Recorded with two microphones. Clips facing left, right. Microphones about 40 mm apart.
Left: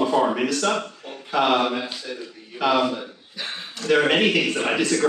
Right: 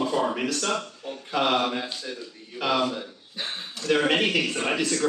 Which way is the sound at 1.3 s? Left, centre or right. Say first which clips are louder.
Left 4 dB; centre.